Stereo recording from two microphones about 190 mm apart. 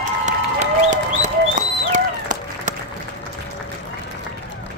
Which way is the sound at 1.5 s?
40° right (ahead or behind).